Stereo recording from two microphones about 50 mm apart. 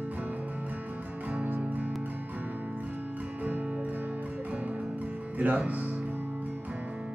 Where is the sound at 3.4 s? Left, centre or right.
Right.